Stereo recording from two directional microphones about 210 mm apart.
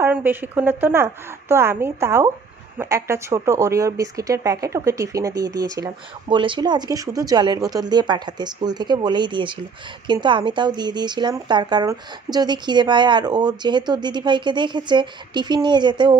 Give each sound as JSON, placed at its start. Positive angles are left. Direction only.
{"t": 0.0, "sound": "speech", "side_deg": -10}